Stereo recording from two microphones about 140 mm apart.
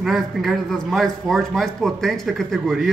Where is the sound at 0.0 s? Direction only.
Centre (ahead or behind).